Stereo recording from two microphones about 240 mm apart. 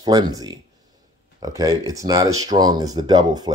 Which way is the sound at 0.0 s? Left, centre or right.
Centre.